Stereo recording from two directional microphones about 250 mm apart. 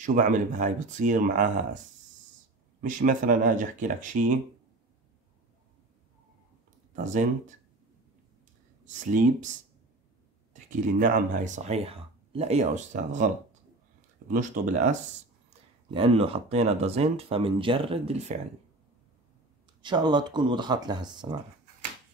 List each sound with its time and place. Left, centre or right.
0.0 s speech: right
2.8 s speech: right
7.0 s speech: right
8.8 s speech: right
10.7 s speech: right
15.9 s speech: right
19.8 s speech: centre